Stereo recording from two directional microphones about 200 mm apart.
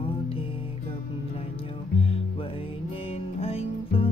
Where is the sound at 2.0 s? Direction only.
30° left (ahead or behind).